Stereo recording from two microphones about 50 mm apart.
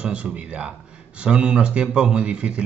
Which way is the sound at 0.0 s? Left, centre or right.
Right.